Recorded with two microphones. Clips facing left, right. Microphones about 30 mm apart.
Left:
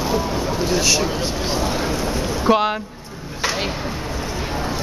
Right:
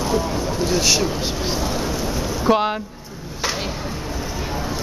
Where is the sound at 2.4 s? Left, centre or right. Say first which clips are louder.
Left 1 dB; centre.